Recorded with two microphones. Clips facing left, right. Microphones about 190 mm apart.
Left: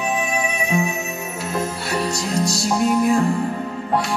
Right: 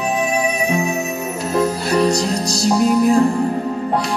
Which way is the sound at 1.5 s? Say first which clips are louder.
Right 8 dB; 35° right (ahead or behind).